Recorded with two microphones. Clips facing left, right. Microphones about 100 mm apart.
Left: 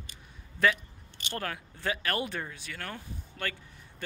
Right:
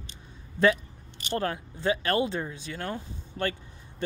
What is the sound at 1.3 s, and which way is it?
Speech, 25° right (ahead or behind).